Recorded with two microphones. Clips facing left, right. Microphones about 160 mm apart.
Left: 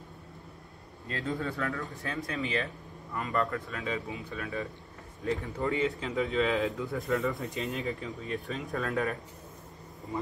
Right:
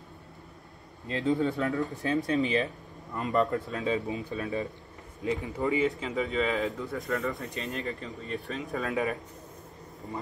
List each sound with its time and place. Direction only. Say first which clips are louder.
1.0 s speech: right 7 dB; 25° right (ahead or behind)
5.7 s a man's voice: right 3 dB; centre (ahead or behind)